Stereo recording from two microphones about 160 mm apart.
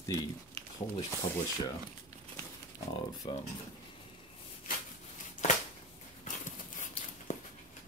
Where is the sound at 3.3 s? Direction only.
30° left (ahead or behind).